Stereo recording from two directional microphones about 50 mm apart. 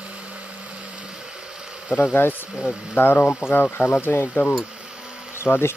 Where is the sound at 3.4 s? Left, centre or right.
Right.